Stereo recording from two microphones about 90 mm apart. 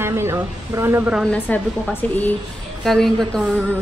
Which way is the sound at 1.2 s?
15° left (ahead or behind).